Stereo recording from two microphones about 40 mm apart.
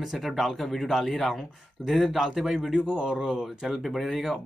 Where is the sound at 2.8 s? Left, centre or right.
Right.